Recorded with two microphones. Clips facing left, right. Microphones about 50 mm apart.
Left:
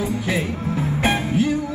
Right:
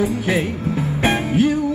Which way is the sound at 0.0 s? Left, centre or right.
Right.